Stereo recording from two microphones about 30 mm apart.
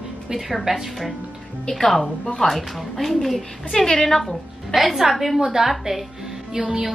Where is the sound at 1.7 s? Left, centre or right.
Centre.